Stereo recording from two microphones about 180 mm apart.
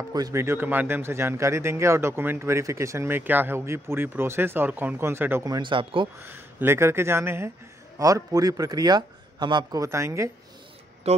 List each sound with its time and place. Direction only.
0.1 s speech: 20° right (ahead or behind)
6.2 s speech: 15° right (ahead or behind)
11.1 s speech: 35° right (ahead or behind)